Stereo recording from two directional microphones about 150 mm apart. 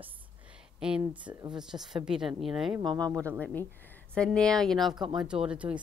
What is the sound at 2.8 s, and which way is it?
Speech, 30° right (ahead or behind).